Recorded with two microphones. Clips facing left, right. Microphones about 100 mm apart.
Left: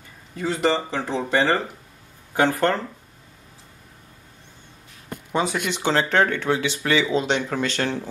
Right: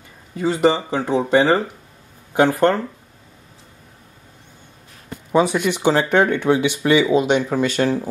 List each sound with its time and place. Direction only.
0.4 s speech: 15° right (ahead or behind)
5.3 s speech: 15° right (ahead or behind)